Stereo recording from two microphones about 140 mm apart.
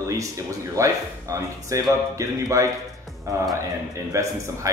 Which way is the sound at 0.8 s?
20° right (ahead or behind).